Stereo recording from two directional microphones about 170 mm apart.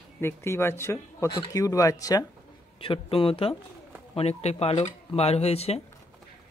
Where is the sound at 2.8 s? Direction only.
30° left (ahead or behind).